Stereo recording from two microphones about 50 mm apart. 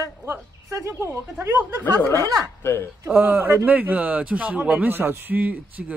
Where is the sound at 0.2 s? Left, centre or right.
Right.